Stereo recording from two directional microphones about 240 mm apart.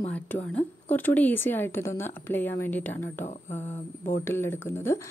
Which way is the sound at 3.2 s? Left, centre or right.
Left.